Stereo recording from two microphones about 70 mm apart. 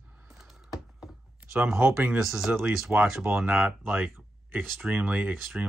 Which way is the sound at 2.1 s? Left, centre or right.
Centre.